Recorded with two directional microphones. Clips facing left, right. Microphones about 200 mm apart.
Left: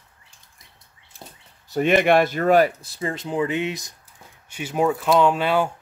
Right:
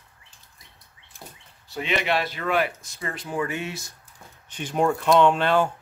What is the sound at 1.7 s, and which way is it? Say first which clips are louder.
Speech: left 9 dB; 50° left (ahead or behind).